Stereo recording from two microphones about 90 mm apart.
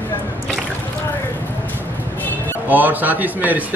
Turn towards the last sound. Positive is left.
turn(degrees=-20)  # may be behind; listen again after turning